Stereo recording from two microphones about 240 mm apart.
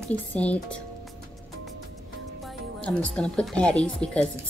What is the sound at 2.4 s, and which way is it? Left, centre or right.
Speech, centre.